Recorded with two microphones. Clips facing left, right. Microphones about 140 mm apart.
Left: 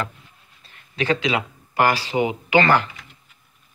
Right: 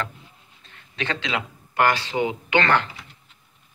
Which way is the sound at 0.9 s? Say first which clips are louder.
Left 6 dB; 5° left (ahead or behind).